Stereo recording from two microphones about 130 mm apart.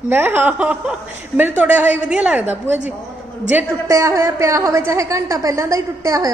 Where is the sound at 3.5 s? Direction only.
25° right (ahead or behind).